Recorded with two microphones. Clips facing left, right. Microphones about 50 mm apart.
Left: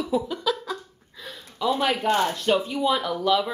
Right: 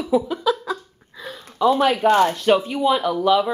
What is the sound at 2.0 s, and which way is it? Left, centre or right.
Speech, right.